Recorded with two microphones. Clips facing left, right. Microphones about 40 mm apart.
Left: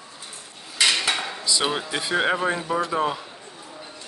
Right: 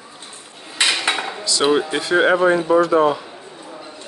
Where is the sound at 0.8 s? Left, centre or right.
Right.